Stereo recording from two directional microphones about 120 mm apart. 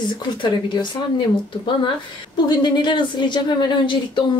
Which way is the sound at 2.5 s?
40° left (ahead or behind).